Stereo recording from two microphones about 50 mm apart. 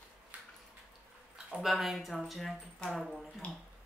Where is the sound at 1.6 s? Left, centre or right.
Centre.